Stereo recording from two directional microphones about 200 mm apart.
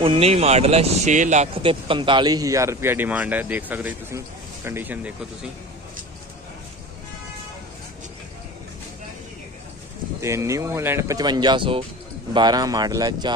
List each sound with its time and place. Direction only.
0.0 s speech: 30° right (ahead or behind); by 5.1 s 10° right (ahead or behind)
10.2 s speech: 15° right (ahead or behind)